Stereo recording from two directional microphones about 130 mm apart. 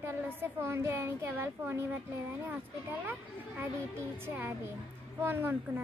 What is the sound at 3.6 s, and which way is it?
A child's voice, 15° right (ahead or behind).